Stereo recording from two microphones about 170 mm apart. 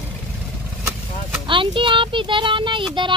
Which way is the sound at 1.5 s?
30° right (ahead or behind).